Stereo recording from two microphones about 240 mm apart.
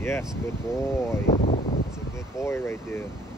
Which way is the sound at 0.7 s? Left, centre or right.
Centre.